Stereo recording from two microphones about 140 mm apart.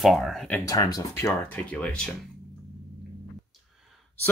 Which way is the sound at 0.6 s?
25° left (ahead or behind).